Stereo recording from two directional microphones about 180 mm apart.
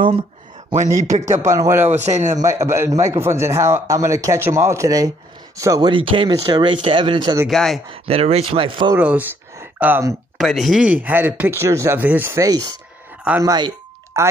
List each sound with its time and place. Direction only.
1.2 s a man's voice: 15° right (ahead or behind)
1.9 s speech: 40° right (ahead or behind)
2.4 s a man's voice: 15° right (ahead or behind)
7.4 s speech: centre (ahead or behind)
7.9 s speech: 35° right (ahead or behind)
8.9 s speech: 10° right (ahead or behind)
10.3 s a man's voice: centre (ahead or behind); by 12.6 s 20° right (ahead or behind)
13.4 s a sound: 20° right (ahead or behind)